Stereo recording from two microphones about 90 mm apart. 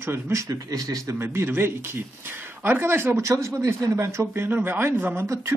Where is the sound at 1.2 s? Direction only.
25° right (ahead or behind).